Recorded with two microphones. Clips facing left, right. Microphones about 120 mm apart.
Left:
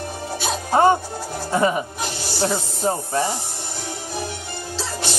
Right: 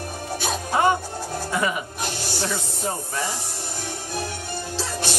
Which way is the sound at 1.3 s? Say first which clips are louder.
Left 5 dB; 30° left (ahead or behind).